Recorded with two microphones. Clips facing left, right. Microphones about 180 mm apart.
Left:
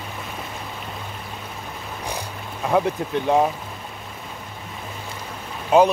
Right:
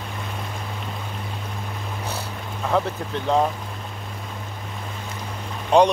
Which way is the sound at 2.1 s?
15° left (ahead or behind).